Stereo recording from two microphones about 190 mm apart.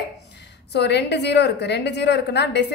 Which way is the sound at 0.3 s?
65° left (ahead or behind).